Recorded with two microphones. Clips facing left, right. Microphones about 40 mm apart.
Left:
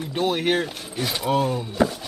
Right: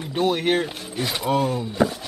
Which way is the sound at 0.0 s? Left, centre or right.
Centre.